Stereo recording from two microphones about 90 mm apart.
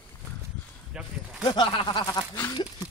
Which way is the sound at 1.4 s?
55° left (ahead or behind).